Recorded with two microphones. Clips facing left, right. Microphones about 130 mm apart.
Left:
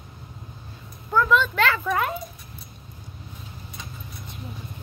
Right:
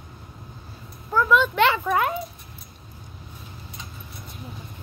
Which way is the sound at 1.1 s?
5° right (ahead or behind).